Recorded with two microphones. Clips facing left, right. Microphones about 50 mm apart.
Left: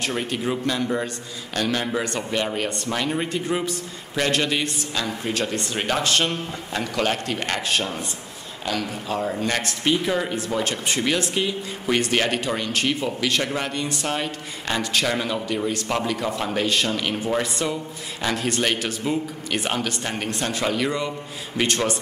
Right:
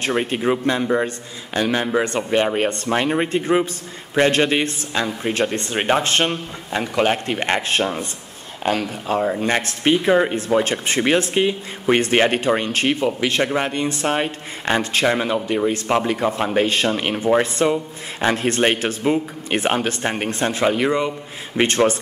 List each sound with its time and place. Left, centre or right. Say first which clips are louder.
0.0 s a man's voice: right 5 dB; right